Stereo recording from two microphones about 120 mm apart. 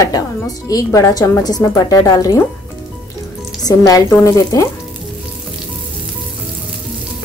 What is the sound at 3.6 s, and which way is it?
Speech, 30° left (ahead or behind).